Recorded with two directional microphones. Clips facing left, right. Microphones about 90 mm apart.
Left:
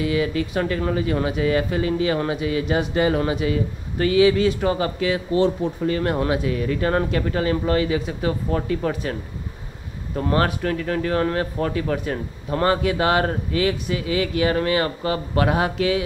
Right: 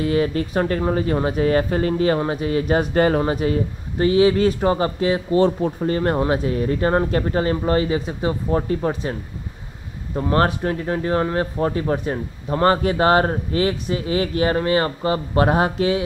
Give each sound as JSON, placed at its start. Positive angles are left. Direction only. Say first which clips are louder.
{"t": 0.0, "sound": "a man's voice", "louder": "right 2 dB", "side_deg": -40}
{"t": 10.3, "sound": "a man's voice", "louder": "right 2 dB", "side_deg": -30}